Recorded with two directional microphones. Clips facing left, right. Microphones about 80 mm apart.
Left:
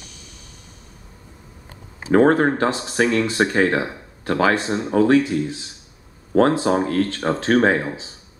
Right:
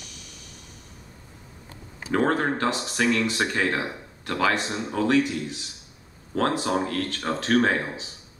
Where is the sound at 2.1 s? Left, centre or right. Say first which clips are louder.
Left 8 dB; left.